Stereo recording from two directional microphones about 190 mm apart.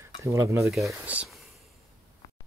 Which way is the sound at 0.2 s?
15° right (ahead or behind).